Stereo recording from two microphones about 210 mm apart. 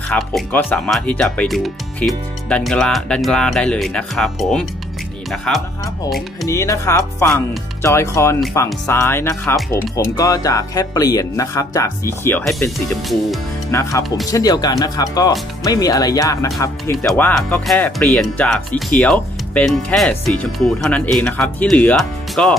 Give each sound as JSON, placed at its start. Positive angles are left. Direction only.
{"t": 0.1, "sound": "speech", "side_deg": 10}
{"t": 6.4, "sound": "speech", "side_deg": 15}
{"t": 17.0, "sound": "speech", "side_deg": 0}